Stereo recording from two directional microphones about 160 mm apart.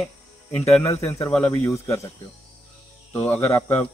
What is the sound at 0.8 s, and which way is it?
Speech, 20° left (ahead or behind).